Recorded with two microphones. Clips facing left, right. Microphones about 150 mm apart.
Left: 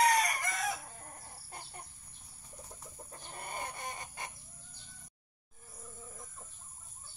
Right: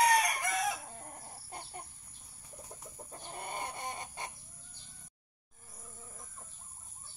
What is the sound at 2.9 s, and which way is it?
Chicken, 20° right (ahead or behind).